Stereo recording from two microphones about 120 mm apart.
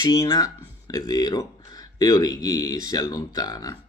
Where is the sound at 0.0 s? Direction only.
30° left (ahead or behind).